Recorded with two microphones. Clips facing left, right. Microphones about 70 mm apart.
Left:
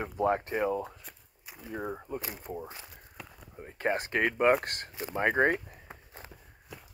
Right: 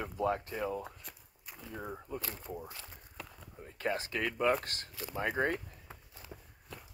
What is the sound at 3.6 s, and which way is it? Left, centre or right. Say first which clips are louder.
Speech: left 5 dB; left.